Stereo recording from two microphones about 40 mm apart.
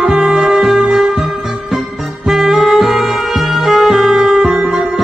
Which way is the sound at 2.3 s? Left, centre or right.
Centre.